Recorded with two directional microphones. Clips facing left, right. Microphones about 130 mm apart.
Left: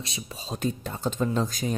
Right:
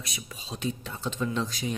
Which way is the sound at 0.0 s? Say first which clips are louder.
Left 4 dB; 30° left (ahead or behind).